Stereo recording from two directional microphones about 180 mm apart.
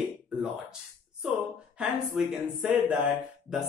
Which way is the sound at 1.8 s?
5° right (ahead or behind).